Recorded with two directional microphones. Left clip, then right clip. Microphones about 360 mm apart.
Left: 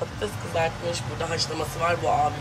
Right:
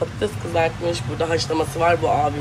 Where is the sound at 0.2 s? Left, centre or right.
Centre.